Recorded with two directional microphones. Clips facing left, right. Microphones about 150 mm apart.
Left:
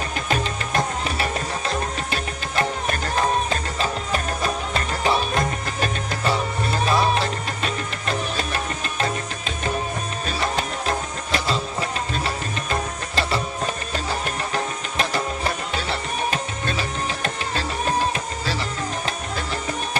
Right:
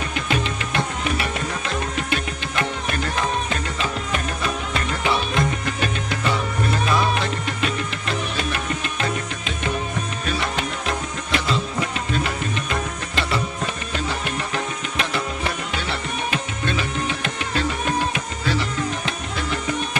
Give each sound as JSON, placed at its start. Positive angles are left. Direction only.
{"t": 0.3, "sound": "music", "side_deg": 40}
{"t": 10.2, "sound": "music", "side_deg": 35}
{"t": 14.5, "sound": "music", "side_deg": 35}